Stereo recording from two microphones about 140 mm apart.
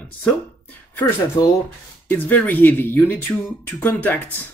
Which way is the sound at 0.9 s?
25° left (ahead or behind).